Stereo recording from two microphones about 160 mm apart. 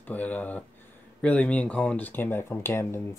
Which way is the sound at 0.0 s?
10° left (ahead or behind).